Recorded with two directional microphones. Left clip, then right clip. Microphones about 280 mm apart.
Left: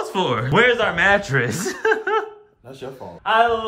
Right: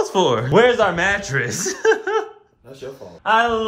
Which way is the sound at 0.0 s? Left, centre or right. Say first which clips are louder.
Right 4 dB; centre.